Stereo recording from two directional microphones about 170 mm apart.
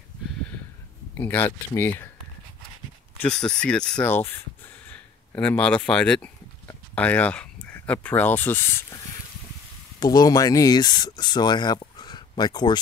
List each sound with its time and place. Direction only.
1.1 s speech: 10° left (ahead or behind)
3.2 s speech: 5° left (ahead or behind)
3.9 s speech: 15° left (ahead or behind)